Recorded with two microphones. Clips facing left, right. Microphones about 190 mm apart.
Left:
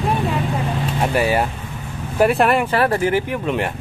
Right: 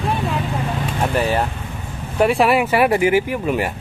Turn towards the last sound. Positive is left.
turn(degrees=-5)  # may be behind; listen again after turning